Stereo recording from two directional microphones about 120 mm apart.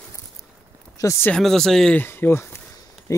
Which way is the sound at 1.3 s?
5° left (ahead or behind).